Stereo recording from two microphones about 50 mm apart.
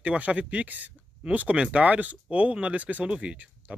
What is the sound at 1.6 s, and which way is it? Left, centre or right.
Speech, centre.